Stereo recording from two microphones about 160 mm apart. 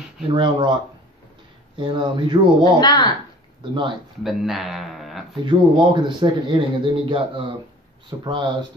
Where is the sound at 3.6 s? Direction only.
30° right (ahead or behind).